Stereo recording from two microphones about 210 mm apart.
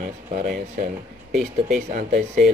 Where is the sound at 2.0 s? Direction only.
40° right (ahead or behind).